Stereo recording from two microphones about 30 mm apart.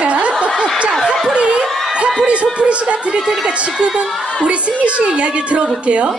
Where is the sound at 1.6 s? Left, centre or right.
Centre.